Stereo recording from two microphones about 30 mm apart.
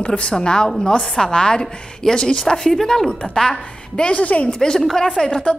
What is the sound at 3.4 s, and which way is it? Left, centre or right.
Speech, left.